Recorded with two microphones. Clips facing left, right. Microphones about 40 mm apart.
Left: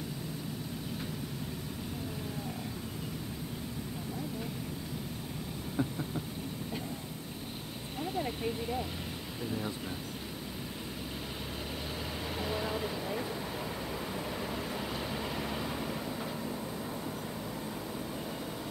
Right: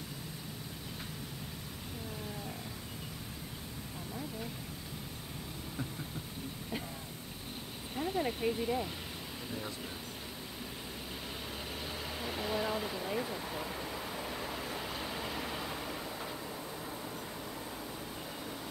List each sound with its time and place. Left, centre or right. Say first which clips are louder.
8.0 s vehicle: right 2 dB; centre
9.4 s a sound: left 6 dB; centre
10.6 s vehicle: left 3 dB; centre